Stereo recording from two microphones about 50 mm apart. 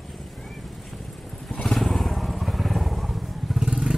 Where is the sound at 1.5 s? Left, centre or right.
Centre.